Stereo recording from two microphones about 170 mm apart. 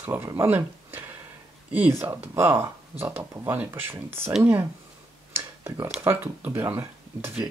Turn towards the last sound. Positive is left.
turn(degrees=-10)  # may be behind; listen again after turning